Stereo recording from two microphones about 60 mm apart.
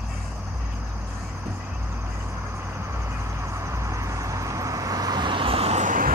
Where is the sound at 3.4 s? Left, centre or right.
Right.